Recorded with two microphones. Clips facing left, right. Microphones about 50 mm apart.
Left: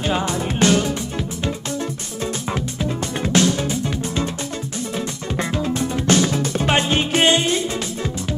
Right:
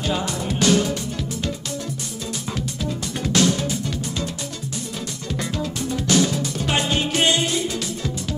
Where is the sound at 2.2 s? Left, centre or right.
Left.